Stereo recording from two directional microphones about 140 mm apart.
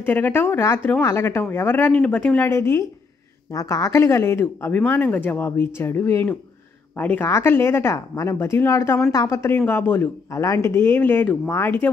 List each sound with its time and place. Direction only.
0.0 s speech: 15° left (ahead or behind)